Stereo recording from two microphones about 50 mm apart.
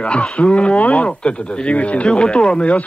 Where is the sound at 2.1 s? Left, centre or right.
Centre.